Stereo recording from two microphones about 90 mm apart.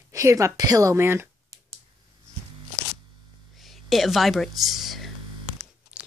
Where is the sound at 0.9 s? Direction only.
25° right (ahead or behind).